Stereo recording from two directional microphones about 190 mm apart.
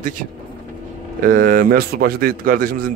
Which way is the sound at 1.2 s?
45° right (ahead or behind).